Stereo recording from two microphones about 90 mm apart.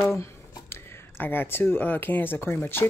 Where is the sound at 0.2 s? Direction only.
25° left (ahead or behind).